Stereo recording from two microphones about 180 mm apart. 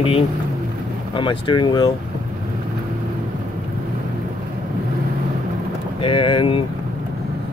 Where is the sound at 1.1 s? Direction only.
25° left (ahead or behind).